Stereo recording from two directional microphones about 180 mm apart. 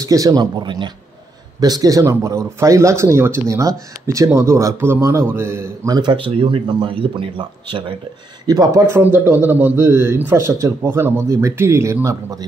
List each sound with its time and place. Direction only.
0.0 s a man's voice: 20° right (ahead or behind)